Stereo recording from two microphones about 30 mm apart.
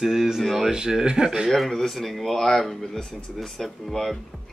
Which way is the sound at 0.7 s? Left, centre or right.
Right.